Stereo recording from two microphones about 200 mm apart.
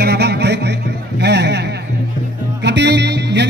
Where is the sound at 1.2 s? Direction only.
55° right (ahead or behind).